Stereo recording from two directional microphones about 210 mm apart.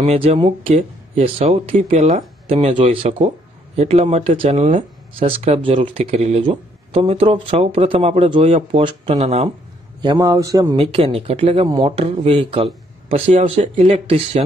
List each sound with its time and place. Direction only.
0.0 s speech: 30° right (ahead or behind)
10.0 s speech: 15° right (ahead or behind)